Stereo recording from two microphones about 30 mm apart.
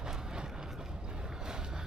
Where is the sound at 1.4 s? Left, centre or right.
Right.